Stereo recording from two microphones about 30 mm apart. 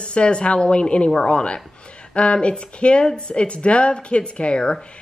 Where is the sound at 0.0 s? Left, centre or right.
Left.